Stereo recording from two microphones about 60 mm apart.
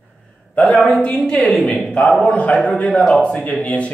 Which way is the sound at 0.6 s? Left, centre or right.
Left.